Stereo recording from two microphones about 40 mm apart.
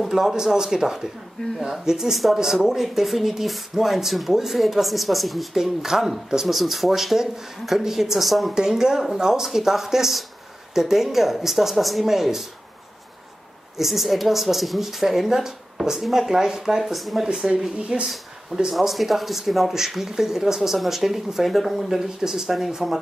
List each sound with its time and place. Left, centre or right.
0.0 s speech: centre
8.5 s speech: centre
13.7 s speech: centre
16.8 s speech: centre
17.3 s speech: centre
17.7 s speech: right
18.0 s speech: centre